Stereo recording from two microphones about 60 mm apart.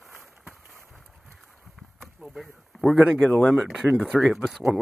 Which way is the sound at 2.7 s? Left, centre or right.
Centre.